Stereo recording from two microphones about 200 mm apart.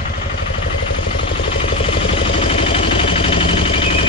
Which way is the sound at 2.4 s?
30° left (ahead or behind).